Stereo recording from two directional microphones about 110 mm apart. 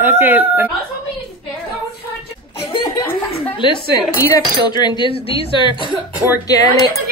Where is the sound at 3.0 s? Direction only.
20° left (ahead or behind).